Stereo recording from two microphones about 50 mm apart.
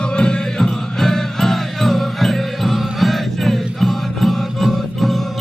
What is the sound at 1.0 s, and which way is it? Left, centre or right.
Music, centre.